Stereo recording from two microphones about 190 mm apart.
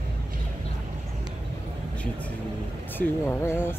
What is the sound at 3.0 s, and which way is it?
Speech, 10° left (ahead or behind).